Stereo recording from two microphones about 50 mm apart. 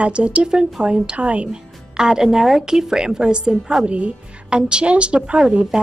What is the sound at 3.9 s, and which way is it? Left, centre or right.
A woman's voice, right.